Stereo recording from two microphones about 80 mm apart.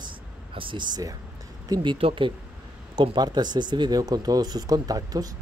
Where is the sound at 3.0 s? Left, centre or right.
Right.